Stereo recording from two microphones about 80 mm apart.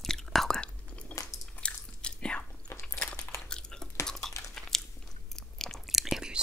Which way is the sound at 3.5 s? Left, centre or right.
Centre.